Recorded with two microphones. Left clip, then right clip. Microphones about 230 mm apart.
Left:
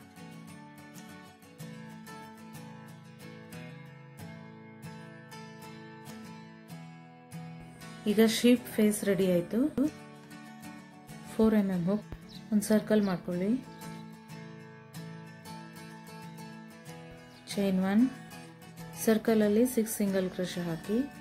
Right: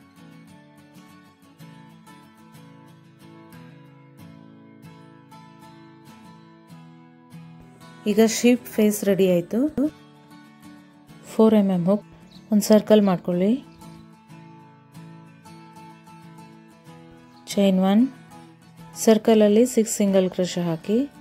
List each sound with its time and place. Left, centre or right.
8.0 s speech: right
11.3 s speech: right
17.6 s speech: right